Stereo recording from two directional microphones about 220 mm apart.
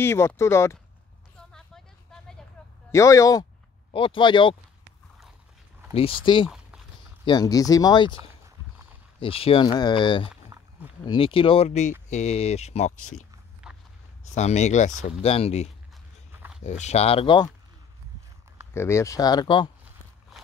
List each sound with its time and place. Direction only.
0.0 s speech: 10° left (ahead or behind)
2.9 s speech: 15° left (ahead or behind)
6.2 s speech: 20° left (ahead or behind)
9.2 s speech: 25° left (ahead or behind)
12.9 s speech: 85° left
13.7 s walk: 5° right (ahead or behind)
14.2 s speech: 30° left (ahead or behind)
16.3 s walk: 5° right (ahead or behind)
16.6 s speech: 30° left (ahead or behind)
18.7 s speech: 10° left (ahead or behind)